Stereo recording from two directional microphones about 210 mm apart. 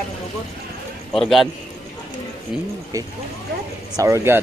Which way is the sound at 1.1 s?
Centre (ahead or behind).